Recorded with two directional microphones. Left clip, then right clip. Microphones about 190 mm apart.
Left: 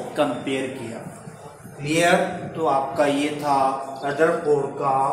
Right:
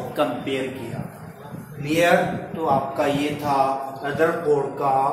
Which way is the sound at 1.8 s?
25° left (ahead or behind).